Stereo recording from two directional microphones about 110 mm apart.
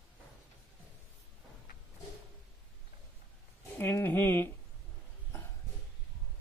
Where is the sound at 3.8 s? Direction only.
20° left (ahead or behind).